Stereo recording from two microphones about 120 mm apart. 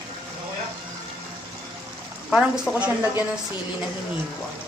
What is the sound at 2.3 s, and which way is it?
Speech, 5° right (ahead or behind).